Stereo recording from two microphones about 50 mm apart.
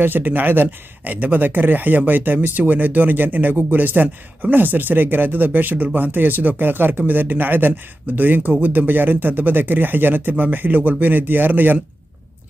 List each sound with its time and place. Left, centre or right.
0.0 s speech: right